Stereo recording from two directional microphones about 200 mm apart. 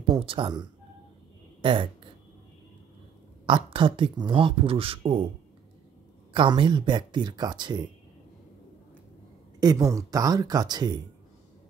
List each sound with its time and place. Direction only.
0.0 s speech: 25° right (ahead or behind)
3.4 s speech: 25° right (ahead or behind)
6.3 s speech: 25° right (ahead or behind)
9.6 s speech: 20° right (ahead or behind)